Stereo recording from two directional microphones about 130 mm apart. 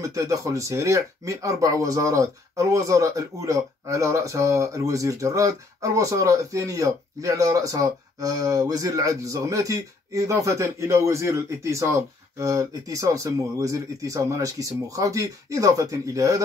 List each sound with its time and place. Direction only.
0.0 s speech: 25° right (ahead or behind)